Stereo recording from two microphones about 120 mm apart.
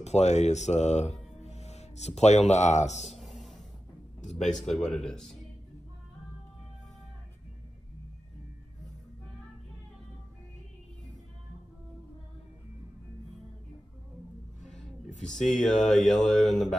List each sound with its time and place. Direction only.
0.0 s speech: 70° left (ahead or behind)
3.1 s a sound: centre (ahead or behind)
4.6 s speech: 5° left (ahead or behind)
15.2 s speech: 5° left (ahead or behind)